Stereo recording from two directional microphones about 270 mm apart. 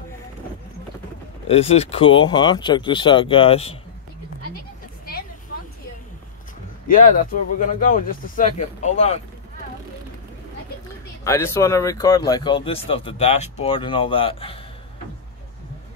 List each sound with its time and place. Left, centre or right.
1.5 s speech: left
6.9 s speech: left
11.2 s speech: centre